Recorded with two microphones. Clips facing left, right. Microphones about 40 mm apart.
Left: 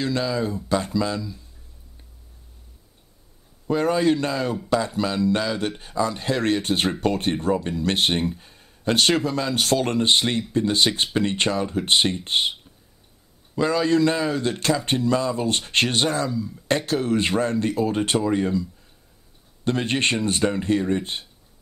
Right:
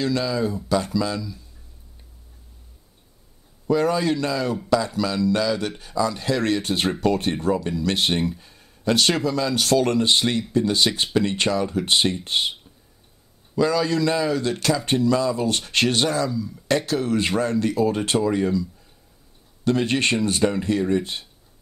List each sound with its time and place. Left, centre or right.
0.0 s speech: left
3.6 s speech: left
7.3 s speech: centre
7.6 s speech: left
13.6 s speech: left